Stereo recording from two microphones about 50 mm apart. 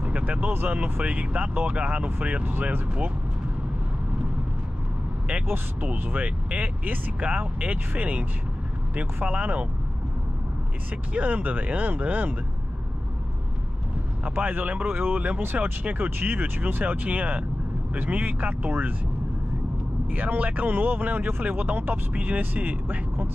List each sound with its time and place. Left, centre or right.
0.0 s speech: right
2.5 s speech: right
5.9 s speech: right
11.1 s speech: right
14.3 s speech: right
20.1 s speech: right